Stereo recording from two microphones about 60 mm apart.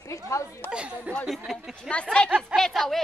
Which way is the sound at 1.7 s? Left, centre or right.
Centre.